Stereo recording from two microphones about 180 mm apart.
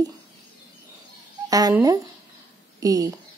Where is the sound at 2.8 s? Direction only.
20° right (ahead or behind).